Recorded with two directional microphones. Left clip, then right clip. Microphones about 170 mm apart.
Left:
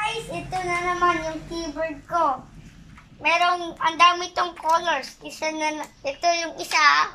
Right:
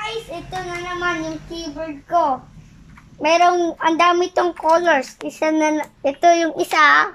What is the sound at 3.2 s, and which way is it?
A child's voice, 50° right (ahead or behind).